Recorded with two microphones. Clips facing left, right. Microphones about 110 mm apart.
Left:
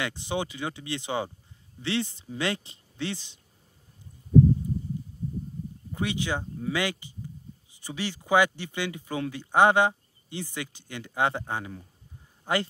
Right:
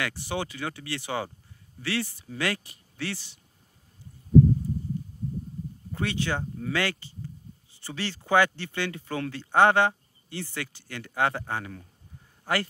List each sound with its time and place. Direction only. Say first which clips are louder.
0.0 s speech: left 1 dB; 20° left (ahead or behind)
5.9 s speech: even; 15° left (ahead or behind)